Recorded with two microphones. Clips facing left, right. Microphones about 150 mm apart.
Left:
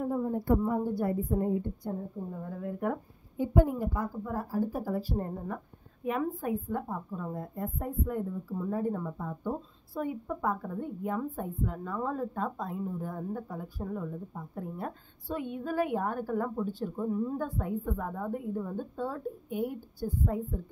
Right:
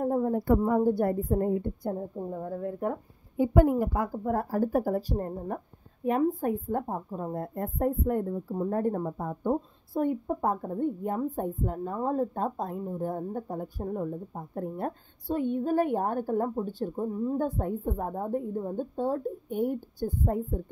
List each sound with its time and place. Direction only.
0.0 s a sound: 55° right (ahead or behind)
0.6 s a woman's voice: 60° right (ahead or behind)
2.6 s speech: 30° right (ahead or behind)
3.3 s a woman's voice: 75° right (ahead or behind); by 18.8 s 35° right (ahead or behind)
18.8 s speech: 25° right (ahead or behind)
20.0 s a woman's voice: 40° right (ahead or behind)